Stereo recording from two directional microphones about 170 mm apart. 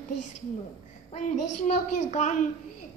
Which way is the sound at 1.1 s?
45° left (ahead or behind).